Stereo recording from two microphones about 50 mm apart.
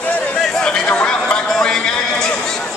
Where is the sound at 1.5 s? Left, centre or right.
Centre.